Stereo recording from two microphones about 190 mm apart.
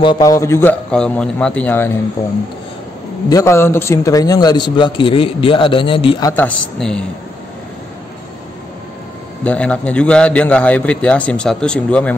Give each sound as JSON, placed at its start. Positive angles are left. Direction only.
{"t": 0.0, "sound": "a man's voice", "side_deg": 20}
{"t": 3.3, "sound": "a man's voice", "side_deg": 15}
{"t": 6.3, "sound": "speech", "side_deg": 10}
{"t": 9.4, "sound": "a man's voice", "side_deg": 5}